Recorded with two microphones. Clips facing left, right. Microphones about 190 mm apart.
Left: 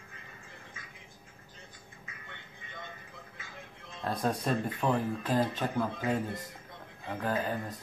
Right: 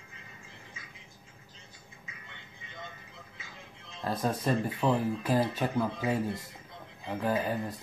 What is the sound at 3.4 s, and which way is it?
Music, 55° left (ahead or behind).